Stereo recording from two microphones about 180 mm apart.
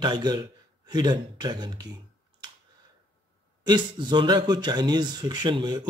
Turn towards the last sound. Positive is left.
turn(degrees=-25)  # may be behind; listen again after turning